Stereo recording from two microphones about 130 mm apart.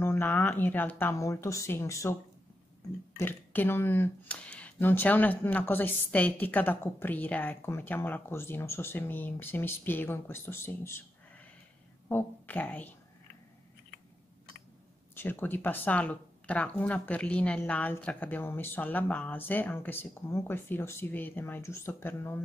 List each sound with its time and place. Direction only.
0.0 s speech: 15° left (ahead or behind)
3.2 s speech: 15° left (ahead or behind)
15.1 s speech: 15° left (ahead or behind)